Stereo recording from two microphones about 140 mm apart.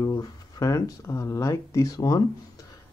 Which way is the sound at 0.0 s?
25° left (ahead or behind).